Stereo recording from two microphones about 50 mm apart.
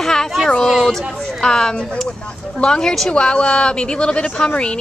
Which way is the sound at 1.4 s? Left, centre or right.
Centre.